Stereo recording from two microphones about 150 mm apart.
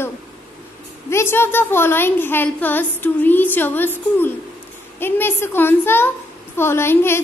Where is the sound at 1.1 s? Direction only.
15° left (ahead or behind).